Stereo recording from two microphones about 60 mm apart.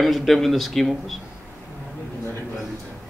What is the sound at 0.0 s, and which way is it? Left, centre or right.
Speech, centre.